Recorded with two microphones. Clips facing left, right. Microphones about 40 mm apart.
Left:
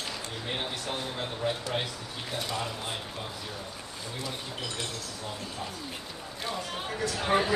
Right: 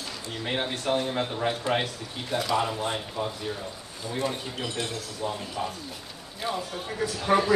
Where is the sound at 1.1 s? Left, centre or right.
Right.